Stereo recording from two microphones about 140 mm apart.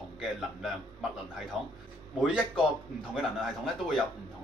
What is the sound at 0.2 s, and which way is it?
A man's voice, 5° right (ahead or behind).